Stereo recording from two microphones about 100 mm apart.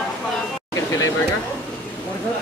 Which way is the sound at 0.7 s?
30° left (ahead or behind).